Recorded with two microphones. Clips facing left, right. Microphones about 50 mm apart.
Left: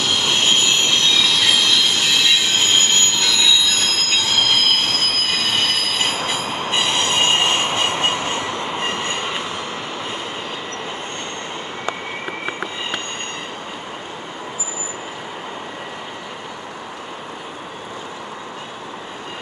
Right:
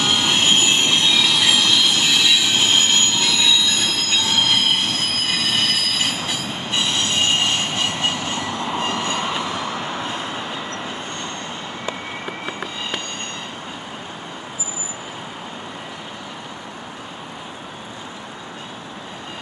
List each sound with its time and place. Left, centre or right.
0.0 s train: right
3.6 s train: centre
4.1 s train: centre
5.3 s train: centre
5.6 s train: centre
6.1 s train: left